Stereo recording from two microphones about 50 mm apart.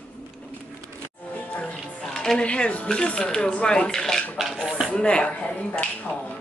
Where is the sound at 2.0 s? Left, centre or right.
Centre.